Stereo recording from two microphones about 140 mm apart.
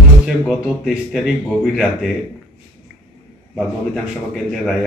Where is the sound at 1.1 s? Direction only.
Centre (ahead or behind).